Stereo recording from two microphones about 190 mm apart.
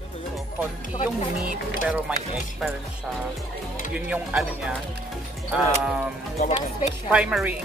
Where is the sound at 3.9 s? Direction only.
5° right (ahead or behind).